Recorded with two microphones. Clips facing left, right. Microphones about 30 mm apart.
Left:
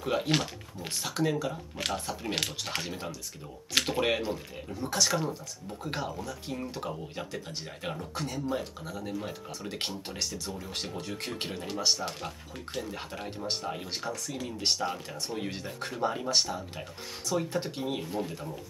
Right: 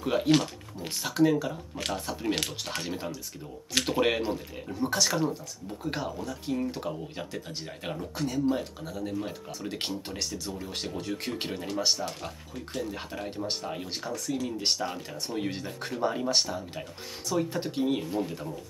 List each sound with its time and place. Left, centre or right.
0.0 s speech: centre
12.0 s speech: centre
12.8 s speech: centre